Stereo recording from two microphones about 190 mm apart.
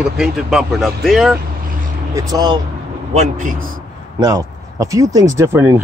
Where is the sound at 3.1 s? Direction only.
40° right (ahead or behind).